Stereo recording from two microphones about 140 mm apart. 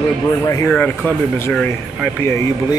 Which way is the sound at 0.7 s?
10° left (ahead or behind).